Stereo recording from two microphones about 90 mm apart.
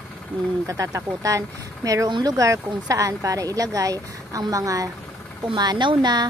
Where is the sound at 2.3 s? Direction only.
40° right (ahead or behind).